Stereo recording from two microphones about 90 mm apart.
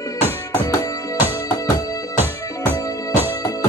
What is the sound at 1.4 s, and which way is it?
Music, 40° left (ahead or behind).